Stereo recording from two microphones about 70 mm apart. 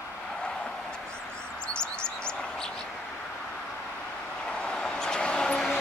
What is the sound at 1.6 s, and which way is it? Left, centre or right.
Chirp, centre.